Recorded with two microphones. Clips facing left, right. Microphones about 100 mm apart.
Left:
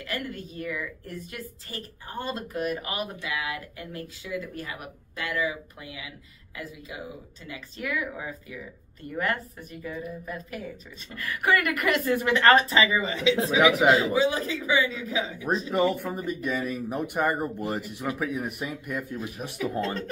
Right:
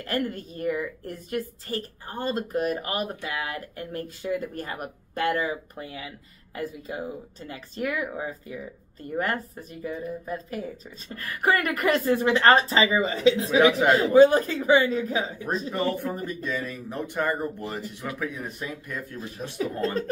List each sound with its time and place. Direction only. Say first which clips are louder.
0.0 s speech: right 5 dB; 40° right (ahead or behind)
9.8 s a sound: right 4 dB; 25° right (ahead or behind)
11.1 s speech: right 1 dB; 35° right (ahead or behind)
13.6 s speech: left 1 dB; 15° left (ahead or behind)
13.9 s a man's voice: right 7 dB; 45° right (ahead or behind)
15.7 s speech: left 4 dB; 15° left (ahead or behind)